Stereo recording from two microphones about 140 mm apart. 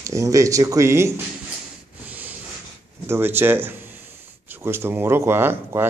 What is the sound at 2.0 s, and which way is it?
Snort, 10° right (ahead or behind).